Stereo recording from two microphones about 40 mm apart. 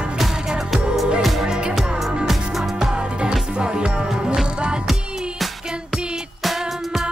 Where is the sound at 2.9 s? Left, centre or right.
Right.